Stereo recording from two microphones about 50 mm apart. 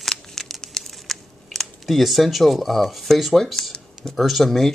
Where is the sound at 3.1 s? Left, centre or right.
Centre.